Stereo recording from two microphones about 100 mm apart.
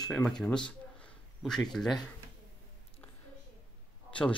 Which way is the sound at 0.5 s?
10° left (ahead or behind).